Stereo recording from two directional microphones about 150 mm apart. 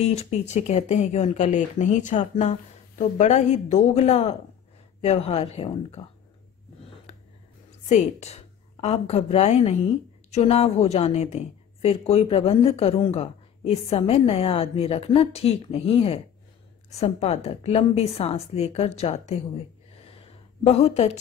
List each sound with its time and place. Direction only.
0.0 s speech: 45° left (ahead or behind)
7.1 s a sound: 45° left (ahead or behind)
7.9 s a woman's voice: 45° left (ahead or behind)
20.6 s speech: 45° left (ahead or behind)